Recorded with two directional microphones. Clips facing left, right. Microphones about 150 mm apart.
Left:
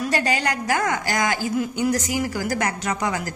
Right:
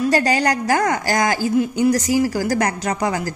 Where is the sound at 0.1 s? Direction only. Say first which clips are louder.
Right 5 dB; 40° right (ahead or behind).